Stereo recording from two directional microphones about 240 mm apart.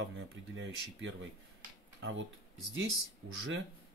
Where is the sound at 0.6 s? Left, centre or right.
Right.